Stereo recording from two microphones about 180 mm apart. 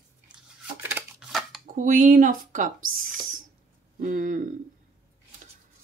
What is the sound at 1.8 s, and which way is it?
Speech, 50° right (ahead or behind).